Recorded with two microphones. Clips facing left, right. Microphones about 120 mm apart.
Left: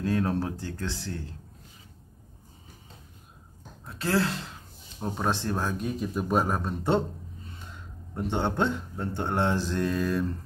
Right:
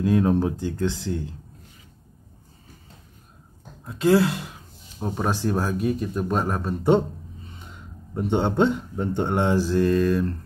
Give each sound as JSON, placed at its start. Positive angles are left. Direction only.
{"t": 0.0, "sound": "speech", "side_deg": -15}
{"t": 3.8, "sound": "speech", "side_deg": -20}
{"t": 7.5, "sound": "a man's voice", "side_deg": -15}